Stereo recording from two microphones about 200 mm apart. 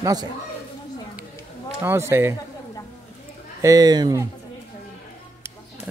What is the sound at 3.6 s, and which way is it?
Speech, 20° right (ahead or behind).